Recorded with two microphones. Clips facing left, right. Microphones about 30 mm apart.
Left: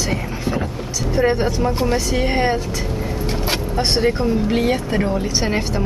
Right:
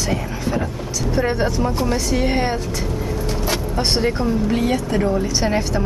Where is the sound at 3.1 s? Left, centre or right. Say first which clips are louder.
Even; left.